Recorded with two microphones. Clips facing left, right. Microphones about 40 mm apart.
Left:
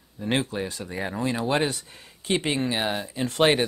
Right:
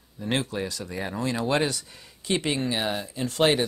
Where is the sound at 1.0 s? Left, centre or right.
Centre.